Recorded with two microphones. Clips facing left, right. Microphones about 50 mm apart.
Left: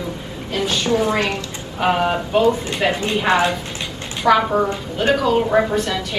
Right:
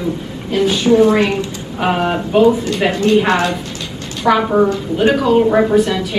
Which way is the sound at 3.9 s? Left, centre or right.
Left.